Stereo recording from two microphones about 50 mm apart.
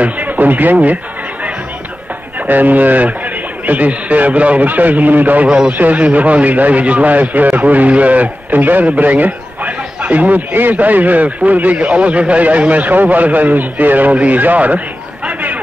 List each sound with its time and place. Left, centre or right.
0.0 s a man's voice: right
2.4 s a man's voice: right
15.2 s a sound: right